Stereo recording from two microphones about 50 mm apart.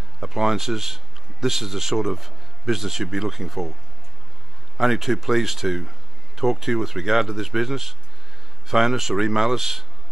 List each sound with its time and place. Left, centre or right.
0.2 s speech: centre
4.7 s speech: centre